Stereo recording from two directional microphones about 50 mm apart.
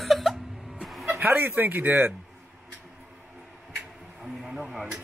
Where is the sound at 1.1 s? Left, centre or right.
Right.